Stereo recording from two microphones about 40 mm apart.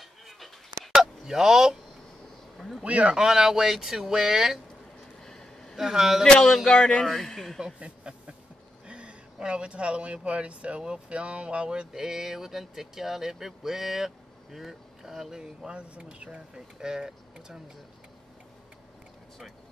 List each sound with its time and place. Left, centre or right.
0.9 s a sound: centre
2.8 s speech: right
3.2 s speech: centre
5.2 s vehicle: centre
5.8 s speech: centre
6.2 s speech: centre
7.8 s speech: right
11.9 s speech: centre
15.9 s speech: right
16.5 s speech: centre